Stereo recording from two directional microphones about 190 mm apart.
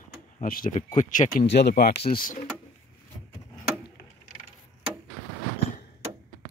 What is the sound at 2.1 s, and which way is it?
Speech, 50° left (ahead or behind).